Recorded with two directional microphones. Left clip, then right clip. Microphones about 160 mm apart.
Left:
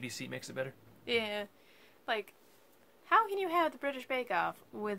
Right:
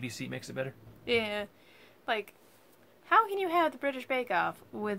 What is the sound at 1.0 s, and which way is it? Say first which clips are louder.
A woman's voice: right 4 dB; 10° right (ahead or behind).